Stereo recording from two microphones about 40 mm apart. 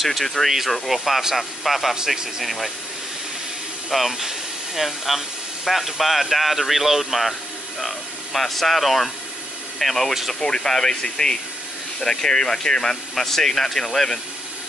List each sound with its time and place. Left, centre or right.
0.0 s speech: centre
3.9 s speech: centre